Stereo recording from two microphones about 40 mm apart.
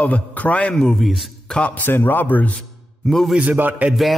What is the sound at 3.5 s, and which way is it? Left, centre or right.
Speech, right.